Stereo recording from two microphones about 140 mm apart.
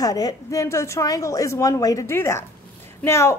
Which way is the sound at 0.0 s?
25° left (ahead or behind).